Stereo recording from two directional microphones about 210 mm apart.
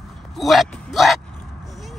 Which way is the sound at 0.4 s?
Centre (ahead or behind).